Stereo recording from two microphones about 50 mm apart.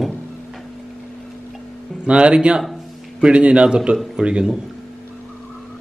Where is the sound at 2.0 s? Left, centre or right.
Right.